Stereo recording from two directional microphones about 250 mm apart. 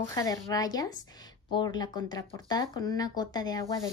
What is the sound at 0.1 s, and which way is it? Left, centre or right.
Speech, centre.